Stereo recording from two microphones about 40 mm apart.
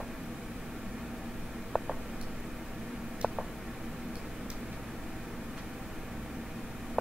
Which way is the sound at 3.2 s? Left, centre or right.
Centre.